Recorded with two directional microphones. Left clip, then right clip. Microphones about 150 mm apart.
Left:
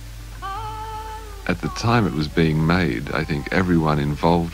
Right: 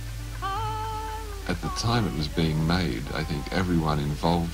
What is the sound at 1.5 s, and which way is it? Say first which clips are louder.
Speech: left 7 dB; 15° left (ahead or behind).